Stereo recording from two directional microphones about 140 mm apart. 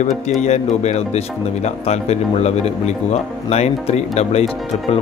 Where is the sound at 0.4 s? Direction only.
55° left (ahead or behind).